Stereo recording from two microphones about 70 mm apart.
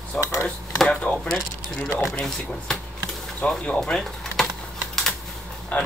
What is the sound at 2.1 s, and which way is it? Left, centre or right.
Speech, centre.